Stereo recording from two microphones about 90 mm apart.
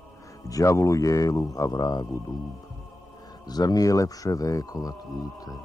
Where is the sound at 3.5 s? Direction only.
45° left (ahead or behind).